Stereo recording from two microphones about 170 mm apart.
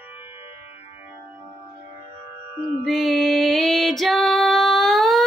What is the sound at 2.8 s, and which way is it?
Music, centre (ahead or behind).